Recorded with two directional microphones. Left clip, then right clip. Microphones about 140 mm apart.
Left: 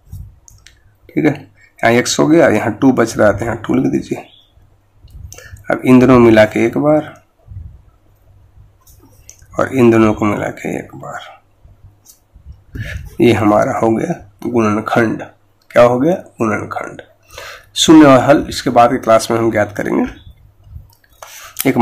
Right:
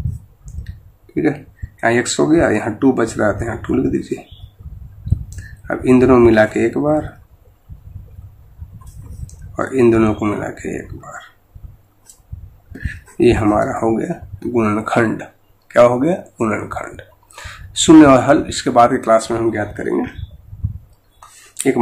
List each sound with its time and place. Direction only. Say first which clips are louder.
1.1 s speech: left 3 dB; 40° left (ahead or behind)
5.3 s speech: left 6 dB; 35° left (ahead or behind)
9.6 s speech: left 3 dB; 35° left (ahead or behind)
13.2 s speech: left 3 dB; 35° left (ahead or behind); by 19.1 s 20° left (ahead or behind)
19.1 s speech: left 4 dB; 40° left (ahead or behind)